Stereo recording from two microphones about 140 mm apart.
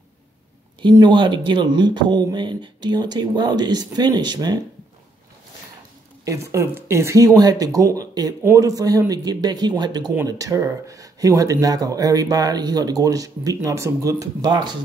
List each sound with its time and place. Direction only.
0.8 s speech: 30° right (ahead or behind)
6.2 s speech: 20° right (ahead or behind)